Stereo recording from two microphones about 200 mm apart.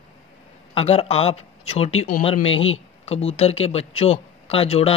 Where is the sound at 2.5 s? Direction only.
80° left.